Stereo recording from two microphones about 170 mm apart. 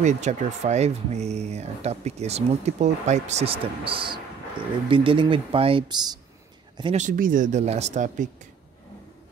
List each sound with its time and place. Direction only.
0.0 s speech: 45° right (ahead or behind)
3.8 s speech: 30° right (ahead or behind)
7.0 s speech: 50° right (ahead or behind)